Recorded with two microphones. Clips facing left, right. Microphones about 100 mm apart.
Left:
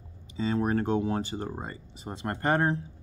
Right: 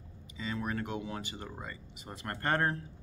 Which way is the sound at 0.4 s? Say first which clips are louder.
Left 9 dB; 35° left (ahead or behind).